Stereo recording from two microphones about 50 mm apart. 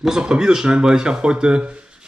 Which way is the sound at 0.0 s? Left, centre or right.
Centre.